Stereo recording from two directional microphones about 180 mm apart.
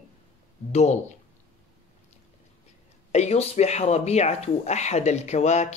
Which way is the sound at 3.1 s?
40° left (ahead or behind).